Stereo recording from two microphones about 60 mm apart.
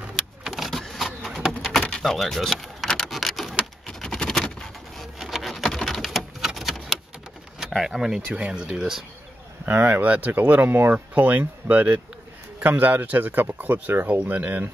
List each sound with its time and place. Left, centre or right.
0.5 s printer: centre
1.5 s pigeon: centre
1.9 s door: centre
2.1 s vehicle: centre
3.1 s a sound: centre
7.6 s speech: centre
8.3 s speech: right
9.7 s speech: right